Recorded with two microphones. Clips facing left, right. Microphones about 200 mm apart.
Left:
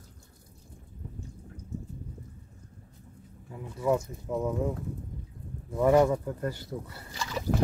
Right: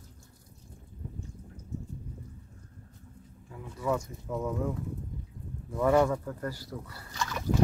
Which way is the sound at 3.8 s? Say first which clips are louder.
Left 4 dB; 15° left (ahead or behind).